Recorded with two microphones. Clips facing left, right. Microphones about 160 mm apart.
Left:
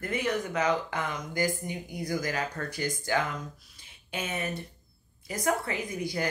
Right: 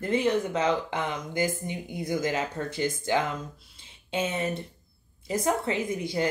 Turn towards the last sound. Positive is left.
turn(degrees=-25)  # may be behind; listen again after turning